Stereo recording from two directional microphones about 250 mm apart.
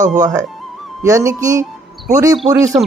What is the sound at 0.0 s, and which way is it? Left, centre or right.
Speech, right.